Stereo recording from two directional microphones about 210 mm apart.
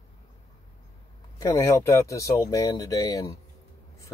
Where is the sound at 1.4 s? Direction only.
15° left (ahead or behind).